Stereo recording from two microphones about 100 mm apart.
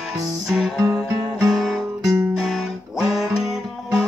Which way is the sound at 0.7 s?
35° right (ahead or behind).